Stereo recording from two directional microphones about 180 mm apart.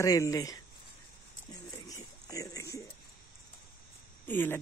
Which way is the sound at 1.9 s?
20° left (ahead or behind).